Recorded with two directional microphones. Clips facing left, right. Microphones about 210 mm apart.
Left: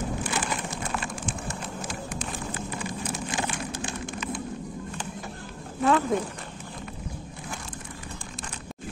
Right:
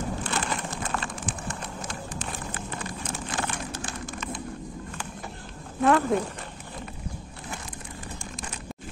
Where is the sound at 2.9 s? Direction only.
15° left (ahead or behind).